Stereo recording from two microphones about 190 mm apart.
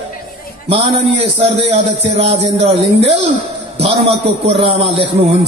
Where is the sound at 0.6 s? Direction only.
30° right (ahead or behind).